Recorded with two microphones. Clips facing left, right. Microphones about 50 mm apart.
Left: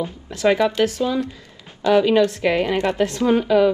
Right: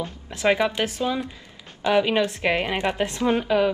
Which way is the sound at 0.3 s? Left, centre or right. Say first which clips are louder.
Left 3 dB; right.